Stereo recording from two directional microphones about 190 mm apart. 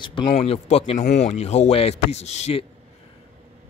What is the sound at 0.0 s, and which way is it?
Speech, 25° left (ahead or behind).